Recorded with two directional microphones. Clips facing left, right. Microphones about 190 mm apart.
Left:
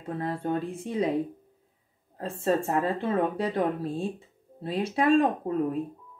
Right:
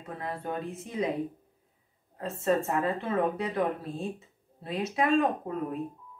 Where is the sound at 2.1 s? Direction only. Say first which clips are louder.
Left 1 dB; 30° left (ahead or behind).